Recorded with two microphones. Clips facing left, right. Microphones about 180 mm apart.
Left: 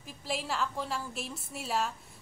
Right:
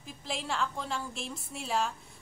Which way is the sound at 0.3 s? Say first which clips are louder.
Even; 5° left (ahead or behind).